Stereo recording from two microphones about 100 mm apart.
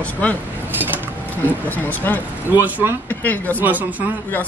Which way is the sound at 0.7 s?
20° right (ahead or behind).